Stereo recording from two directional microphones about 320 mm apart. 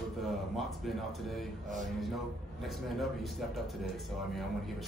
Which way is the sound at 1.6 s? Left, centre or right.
Right.